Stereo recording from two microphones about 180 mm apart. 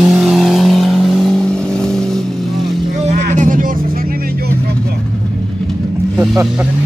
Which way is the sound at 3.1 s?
45° right (ahead or behind).